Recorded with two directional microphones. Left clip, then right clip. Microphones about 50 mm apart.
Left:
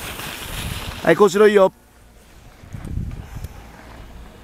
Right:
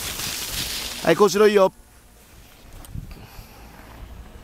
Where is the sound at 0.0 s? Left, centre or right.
Right.